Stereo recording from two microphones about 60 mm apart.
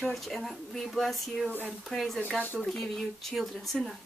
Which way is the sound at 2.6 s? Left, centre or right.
Centre.